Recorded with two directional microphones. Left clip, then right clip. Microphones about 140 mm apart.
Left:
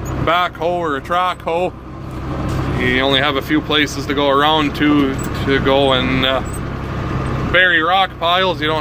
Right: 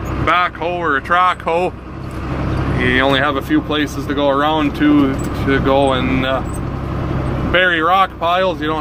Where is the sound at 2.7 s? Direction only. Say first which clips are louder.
Right 1 dB; 15° left (ahead or behind).